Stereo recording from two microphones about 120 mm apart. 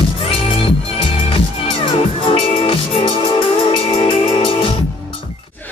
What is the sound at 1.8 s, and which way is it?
Music, 45° left (ahead or behind).